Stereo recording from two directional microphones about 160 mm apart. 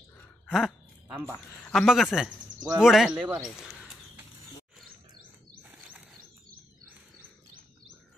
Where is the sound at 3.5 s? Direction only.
Centre (ahead or behind).